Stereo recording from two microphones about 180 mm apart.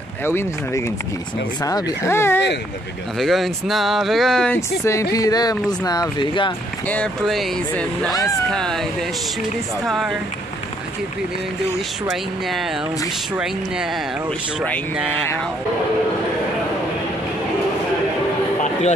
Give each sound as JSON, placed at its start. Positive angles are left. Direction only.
{"t": 0.2, "sound": "speech", "side_deg": 15}
{"t": 3.2, "sound": "speech", "side_deg": 0}
{"t": 4.6, "sound": "speech", "side_deg": 15}
{"t": 6.9, "sound": "speech", "side_deg": 5}
{"t": 9.8, "sound": "speech", "side_deg": 0}
{"t": 12.1, "sound": "speech", "side_deg": 0}